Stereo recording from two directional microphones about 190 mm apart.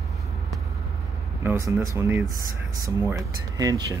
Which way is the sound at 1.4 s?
15° right (ahead or behind).